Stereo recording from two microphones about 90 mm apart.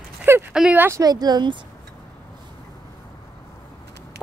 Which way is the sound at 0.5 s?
10° right (ahead or behind).